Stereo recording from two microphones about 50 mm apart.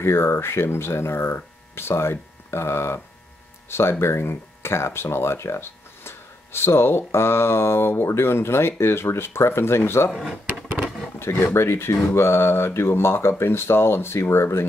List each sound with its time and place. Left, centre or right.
0.0 s speech: left
10.1 s speech: centre
11.1 s a sound: left
11.5 s speech: left